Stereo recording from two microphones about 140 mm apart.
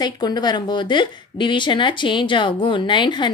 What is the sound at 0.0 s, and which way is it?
A woman's voice, 30° left (ahead or behind).